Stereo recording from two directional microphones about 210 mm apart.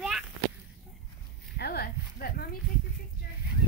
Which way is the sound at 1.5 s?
50° left (ahead or behind).